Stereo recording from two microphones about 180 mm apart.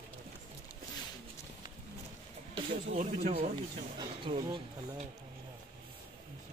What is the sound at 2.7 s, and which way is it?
Music, 45° right (ahead or behind).